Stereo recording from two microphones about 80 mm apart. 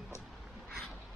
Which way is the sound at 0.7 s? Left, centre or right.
Centre.